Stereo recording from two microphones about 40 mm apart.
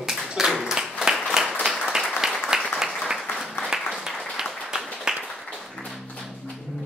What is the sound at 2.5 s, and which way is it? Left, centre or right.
Applause, centre.